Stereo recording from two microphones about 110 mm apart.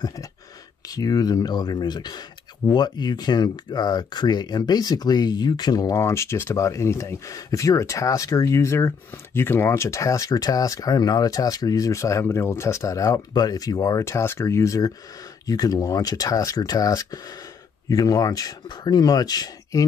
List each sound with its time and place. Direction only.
0.8 s speech: 35° left (ahead or behind)